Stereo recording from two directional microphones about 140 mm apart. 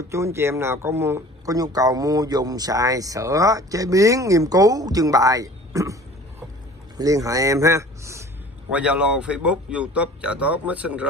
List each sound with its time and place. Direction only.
0.1 s speech: 20° right (ahead or behind)
7.0 s speech: 25° right (ahead or behind)
8.7 s speech: 10° right (ahead or behind)